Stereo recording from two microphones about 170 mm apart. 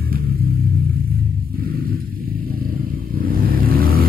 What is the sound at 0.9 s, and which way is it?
Vehicle, 60° right (ahead or behind).